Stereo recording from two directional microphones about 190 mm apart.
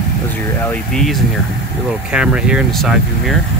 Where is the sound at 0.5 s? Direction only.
10° left (ahead or behind).